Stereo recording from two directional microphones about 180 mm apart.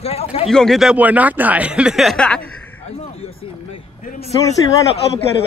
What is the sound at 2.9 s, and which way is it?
A man's voice, 35° left (ahead or behind).